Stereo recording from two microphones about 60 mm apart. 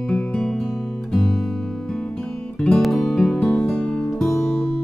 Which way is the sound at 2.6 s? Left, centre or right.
Centre.